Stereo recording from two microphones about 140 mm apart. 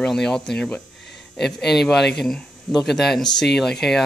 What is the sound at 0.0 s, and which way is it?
Speech, 5° left (ahead or behind).